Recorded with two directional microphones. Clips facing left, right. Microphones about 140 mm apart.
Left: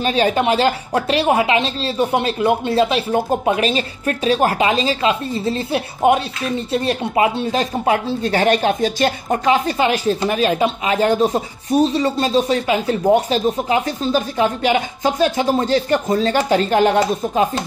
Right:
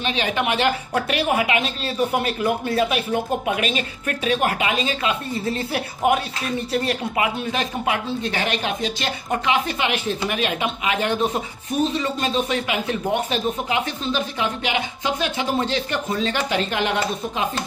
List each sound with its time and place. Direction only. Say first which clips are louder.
0.0 s speech: left 7 dB; 40° left (ahead or behind)